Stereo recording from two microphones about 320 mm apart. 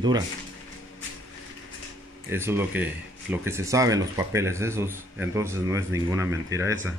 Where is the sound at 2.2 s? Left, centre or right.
Centre.